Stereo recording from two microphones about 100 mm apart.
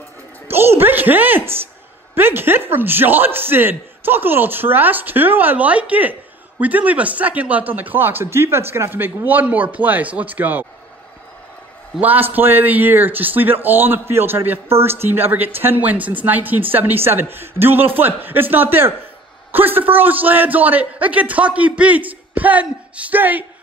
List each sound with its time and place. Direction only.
0.5 s a sound: 25° right (ahead or behind)
2.1 s speech: 20° right (ahead or behind)
12.0 s speech: 15° right (ahead or behind)